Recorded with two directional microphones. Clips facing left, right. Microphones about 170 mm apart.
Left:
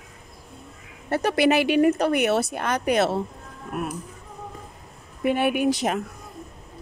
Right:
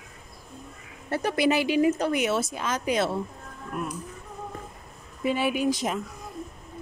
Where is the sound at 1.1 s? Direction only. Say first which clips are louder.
Left 4 dB; 70° left (ahead or behind).